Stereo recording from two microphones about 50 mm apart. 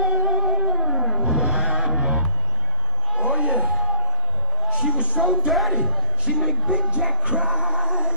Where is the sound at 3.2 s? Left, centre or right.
Right.